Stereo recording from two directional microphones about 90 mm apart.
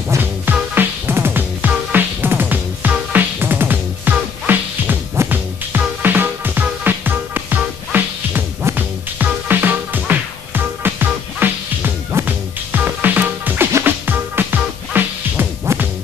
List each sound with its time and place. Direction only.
0.2 s music: 20° right (ahead or behind)